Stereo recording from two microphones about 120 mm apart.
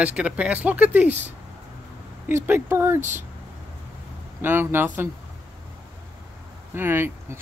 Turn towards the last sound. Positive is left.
turn(degrees=-20)  # may be behind; listen again after turning